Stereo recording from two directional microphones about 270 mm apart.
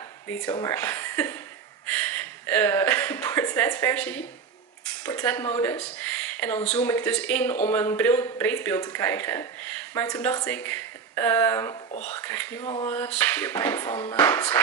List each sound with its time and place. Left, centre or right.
0.3 s speech: centre
2.4 s speech: centre
5.9 s a sound: centre
6.7 s speech: centre
12.6 s a sound: centre
12.9 s speech: centre